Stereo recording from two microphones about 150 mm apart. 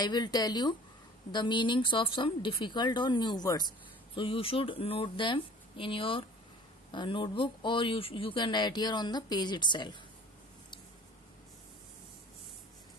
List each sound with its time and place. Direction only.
0.0 s a woman's voice: 30° left (ahead or behind)